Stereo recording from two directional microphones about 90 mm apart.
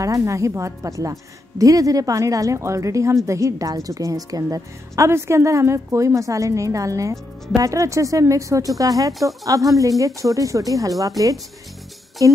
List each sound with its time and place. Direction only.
0.0 s a woman's voice: 35° right (ahead or behind)